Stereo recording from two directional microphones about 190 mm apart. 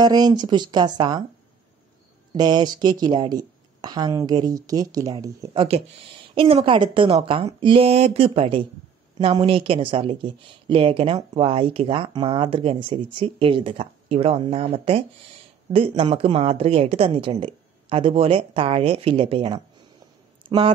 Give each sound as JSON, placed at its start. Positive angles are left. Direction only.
{"t": 0.0, "sound": "speech", "side_deg": -20}
{"t": 2.3, "sound": "speech", "side_deg": -20}